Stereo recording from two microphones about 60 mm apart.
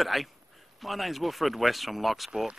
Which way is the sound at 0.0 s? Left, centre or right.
Centre.